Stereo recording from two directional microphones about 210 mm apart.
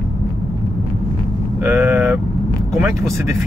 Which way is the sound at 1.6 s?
10° right (ahead or behind).